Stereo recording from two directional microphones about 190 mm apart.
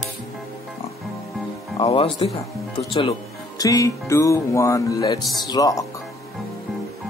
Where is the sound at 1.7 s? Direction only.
30° left (ahead or behind).